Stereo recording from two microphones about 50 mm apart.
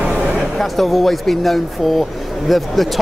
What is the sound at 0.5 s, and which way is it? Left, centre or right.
Speech, centre.